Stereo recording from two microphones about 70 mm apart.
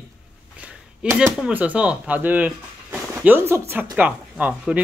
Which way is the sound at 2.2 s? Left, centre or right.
Right.